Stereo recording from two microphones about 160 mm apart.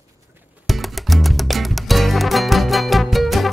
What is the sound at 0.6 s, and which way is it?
Music, centre (ahead or behind).